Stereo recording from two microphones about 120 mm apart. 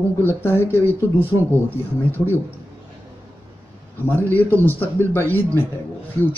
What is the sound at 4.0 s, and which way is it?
A man's voice, 15° left (ahead or behind).